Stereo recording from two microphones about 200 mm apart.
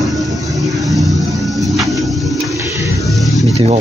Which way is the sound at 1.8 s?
Centre (ahead or behind).